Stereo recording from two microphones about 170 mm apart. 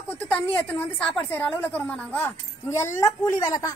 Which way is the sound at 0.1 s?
10° left (ahead or behind).